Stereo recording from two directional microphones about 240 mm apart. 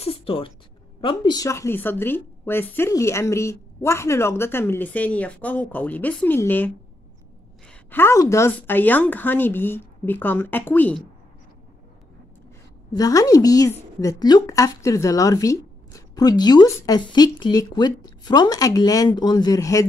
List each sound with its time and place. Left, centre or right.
0.0 s a sound: left
1.0 s a woman's voice: centre
12.9 s a woman's voice: centre